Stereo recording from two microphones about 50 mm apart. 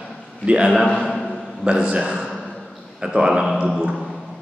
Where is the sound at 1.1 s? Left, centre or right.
Centre.